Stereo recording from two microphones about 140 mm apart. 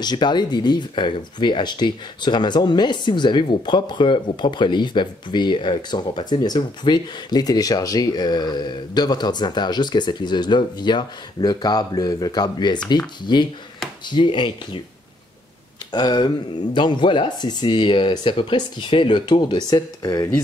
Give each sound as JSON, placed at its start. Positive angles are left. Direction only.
{"t": 0.0, "sound": "speech", "side_deg": 30}
{"t": 15.9, "sound": "speech", "side_deg": 30}